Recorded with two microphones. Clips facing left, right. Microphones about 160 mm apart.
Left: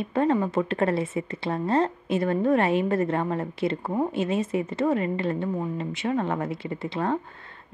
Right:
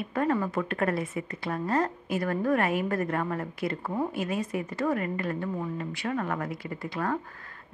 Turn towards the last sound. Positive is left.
turn(degrees=25)  # may be behind; listen again after turning